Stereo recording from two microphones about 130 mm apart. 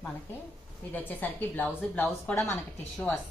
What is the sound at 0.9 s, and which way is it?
A woman's voice, 15° left (ahead or behind).